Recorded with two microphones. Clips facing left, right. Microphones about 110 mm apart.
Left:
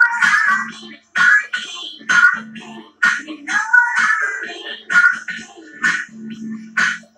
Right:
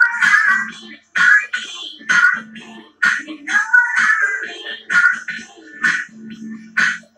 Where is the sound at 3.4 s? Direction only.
30° left (ahead or behind).